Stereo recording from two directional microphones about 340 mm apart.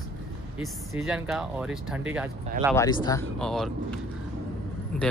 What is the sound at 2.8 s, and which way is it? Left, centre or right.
Speech, centre.